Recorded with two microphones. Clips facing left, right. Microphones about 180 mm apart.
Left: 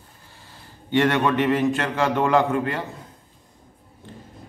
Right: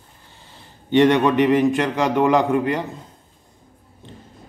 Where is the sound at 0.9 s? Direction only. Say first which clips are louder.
Right 5 dB; 20° right (ahead or behind).